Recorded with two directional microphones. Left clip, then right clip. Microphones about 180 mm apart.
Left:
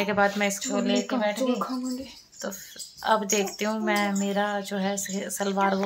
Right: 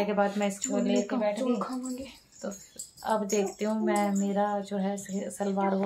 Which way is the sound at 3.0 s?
5° left (ahead or behind).